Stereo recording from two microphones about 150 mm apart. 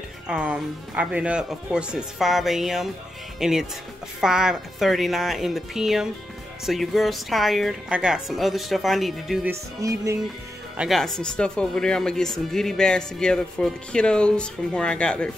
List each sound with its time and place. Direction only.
0.3 s speech: 5° right (ahead or behind)
9.5 s music: 20° right (ahead or behind)
10.8 s speech: centre (ahead or behind)